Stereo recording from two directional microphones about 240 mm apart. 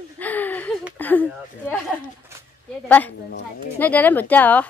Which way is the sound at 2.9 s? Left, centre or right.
Centre.